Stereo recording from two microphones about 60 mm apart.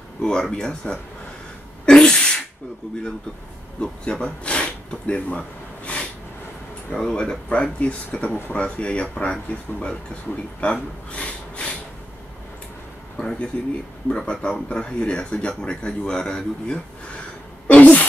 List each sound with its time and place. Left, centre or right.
0.2 s speech: centre
1.9 s sneeze: centre
3.8 s speech: centre
6.9 s speech: centre
13.2 s speech: centre
17.6 s a sound: left